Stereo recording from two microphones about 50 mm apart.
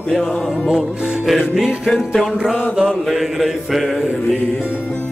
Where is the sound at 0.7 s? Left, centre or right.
Centre.